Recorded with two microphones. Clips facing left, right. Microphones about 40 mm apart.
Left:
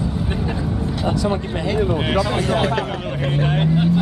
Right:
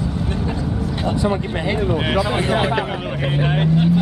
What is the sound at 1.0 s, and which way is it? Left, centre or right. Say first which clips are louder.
Vehicle: right 1 dB; right.